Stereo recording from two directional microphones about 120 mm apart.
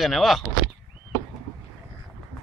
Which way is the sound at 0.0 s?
Centre (ahead or behind).